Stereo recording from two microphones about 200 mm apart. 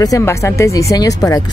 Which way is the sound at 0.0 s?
15° left (ahead or behind).